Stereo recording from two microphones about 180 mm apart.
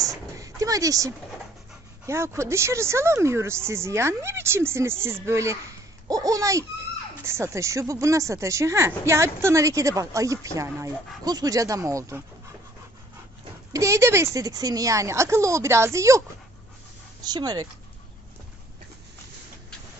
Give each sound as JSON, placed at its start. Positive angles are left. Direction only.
{"t": 0.0, "sound": "a sound", "side_deg": -20}
{"t": 2.0, "sound": "speech", "side_deg": -15}
{"t": 13.7, "sound": "speech", "side_deg": -15}